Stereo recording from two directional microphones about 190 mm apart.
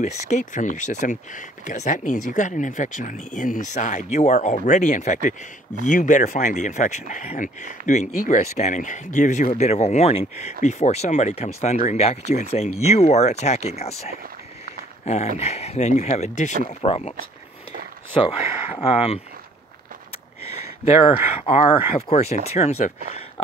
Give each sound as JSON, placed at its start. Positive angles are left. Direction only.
{"t": 0.0, "sound": "speech", "side_deg": 40}
{"t": 18.8, "sound": "speech", "side_deg": 30}
{"t": 21.5, "sound": "speech", "side_deg": 35}